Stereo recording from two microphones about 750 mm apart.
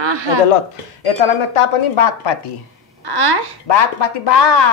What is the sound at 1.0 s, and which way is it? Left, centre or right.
Speech, left.